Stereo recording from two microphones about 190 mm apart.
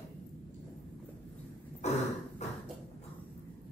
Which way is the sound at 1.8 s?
35° left (ahead or behind).